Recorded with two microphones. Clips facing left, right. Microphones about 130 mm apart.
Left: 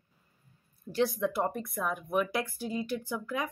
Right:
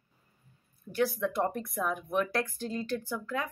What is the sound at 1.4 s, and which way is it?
Speech, centre (ahead or behind).